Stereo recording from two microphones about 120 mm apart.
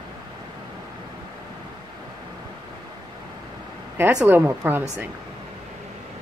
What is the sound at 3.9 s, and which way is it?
Speech, 15° right (ahead or behind).